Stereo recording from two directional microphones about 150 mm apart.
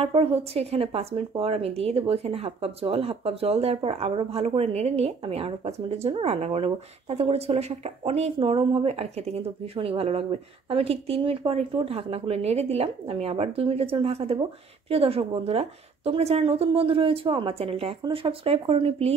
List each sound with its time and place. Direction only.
0.0 s speech: 40° right (ahead or behind)